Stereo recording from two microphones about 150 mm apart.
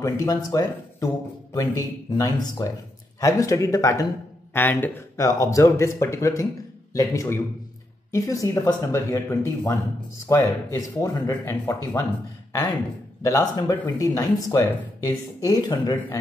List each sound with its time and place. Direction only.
0.0 s speech: 25° left (ahead or behind)
13.2 s speech: 25° left (ahead or behind)